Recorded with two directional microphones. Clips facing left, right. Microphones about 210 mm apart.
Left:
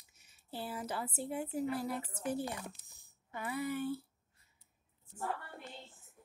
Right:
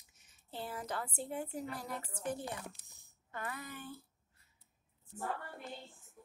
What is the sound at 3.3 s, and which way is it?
Speech, 10° left (ahead or behind).